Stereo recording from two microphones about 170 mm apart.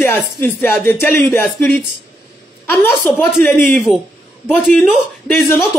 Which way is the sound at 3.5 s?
10° left (ahead or behind).